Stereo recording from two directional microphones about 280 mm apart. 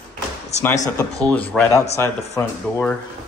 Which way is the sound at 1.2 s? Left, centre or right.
Centre.